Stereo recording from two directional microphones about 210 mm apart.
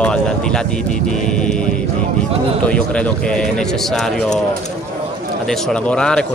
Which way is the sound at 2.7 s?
5° left (ahead or behind).